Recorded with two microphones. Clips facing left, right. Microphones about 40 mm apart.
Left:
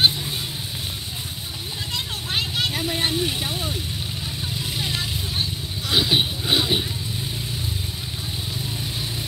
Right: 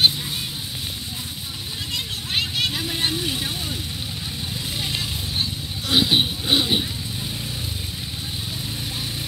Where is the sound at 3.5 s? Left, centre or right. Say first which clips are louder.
Left 1 dB; left.